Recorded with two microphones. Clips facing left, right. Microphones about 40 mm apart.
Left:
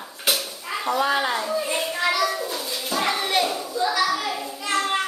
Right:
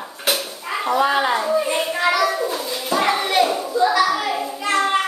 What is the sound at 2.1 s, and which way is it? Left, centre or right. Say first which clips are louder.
Children playing: right 5 dB; centre.